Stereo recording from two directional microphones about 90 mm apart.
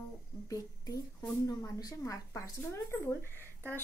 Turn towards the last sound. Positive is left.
turn(degrees=25)  # may be behind; listen again after turning